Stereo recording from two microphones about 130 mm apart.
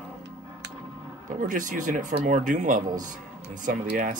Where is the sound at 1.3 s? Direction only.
85° right.